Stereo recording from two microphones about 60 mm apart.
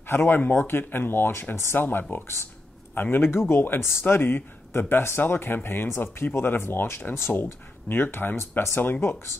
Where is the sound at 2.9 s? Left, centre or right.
Left.